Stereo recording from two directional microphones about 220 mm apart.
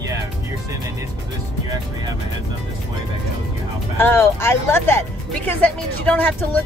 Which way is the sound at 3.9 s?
10° left (ahead or behind).